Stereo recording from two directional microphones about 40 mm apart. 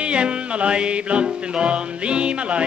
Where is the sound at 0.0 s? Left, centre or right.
Right.